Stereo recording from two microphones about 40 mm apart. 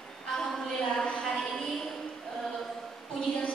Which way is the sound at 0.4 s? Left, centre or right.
Centre.